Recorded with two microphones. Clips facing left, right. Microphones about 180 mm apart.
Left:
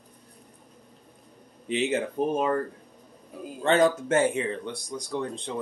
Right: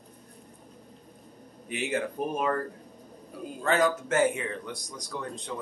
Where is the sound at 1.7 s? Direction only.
25° left (ahead or behind).